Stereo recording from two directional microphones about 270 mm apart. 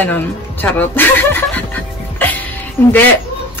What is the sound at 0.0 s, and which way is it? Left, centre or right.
A woman's voice, centre.